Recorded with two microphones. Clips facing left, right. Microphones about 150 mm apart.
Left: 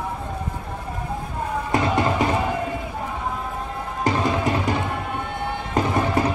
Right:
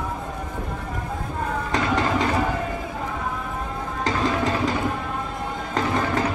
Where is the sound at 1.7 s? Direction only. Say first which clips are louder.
Left 2 dB; 20° left (ahead or behind).